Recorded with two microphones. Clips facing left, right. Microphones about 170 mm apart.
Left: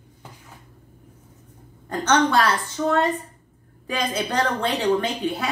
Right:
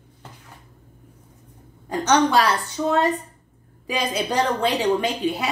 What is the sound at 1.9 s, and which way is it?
A woman's voice, 10° right (ahead or behind).